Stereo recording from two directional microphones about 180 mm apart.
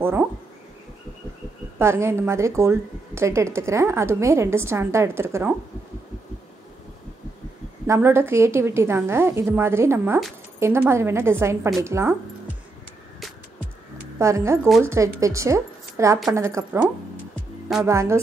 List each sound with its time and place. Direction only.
0.0 s speech: 10° right (ahead or behind)
1.8 s a woman's voice: 15° right (ahead or behind)
7.8 s a woman's voice: 15° right (ahead or behind)
14.1 s a woman's voice: 15° right (ahead or behind)
17.8 s a woman's voice: 15° right (ahead or behind)